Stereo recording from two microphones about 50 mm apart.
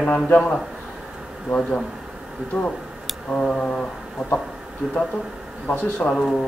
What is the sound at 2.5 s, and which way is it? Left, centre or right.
Speech, centre.